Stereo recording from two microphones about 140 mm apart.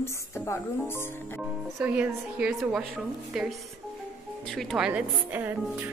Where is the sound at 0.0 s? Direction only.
20° left (ahead or behind).